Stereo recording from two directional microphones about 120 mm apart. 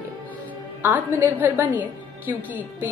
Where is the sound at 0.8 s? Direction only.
15° right (ahead or behind).